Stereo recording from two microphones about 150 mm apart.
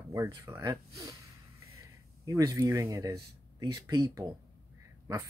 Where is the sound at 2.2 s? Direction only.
25° right (ahead or behind).